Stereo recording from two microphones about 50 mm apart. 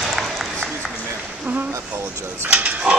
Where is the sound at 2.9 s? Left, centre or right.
Right.